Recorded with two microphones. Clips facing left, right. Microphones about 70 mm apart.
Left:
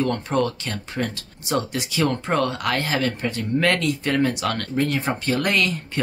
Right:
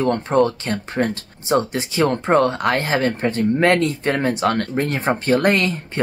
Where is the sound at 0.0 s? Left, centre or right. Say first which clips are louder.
Right 5 dB; right.